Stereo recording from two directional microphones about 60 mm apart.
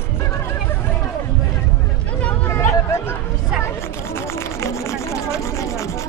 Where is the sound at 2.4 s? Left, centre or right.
Left.